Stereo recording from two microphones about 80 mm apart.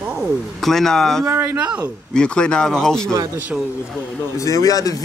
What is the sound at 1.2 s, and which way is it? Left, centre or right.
Speech, right.